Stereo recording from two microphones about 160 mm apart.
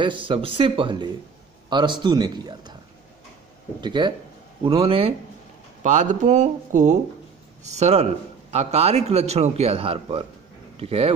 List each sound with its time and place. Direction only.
0.0 s a man's voice: 30° right (ahead or behind)
3.8 s a man's voice: 30° right (ahead or behind)
5.8 s a man's voice: 50° right (ahead or behind)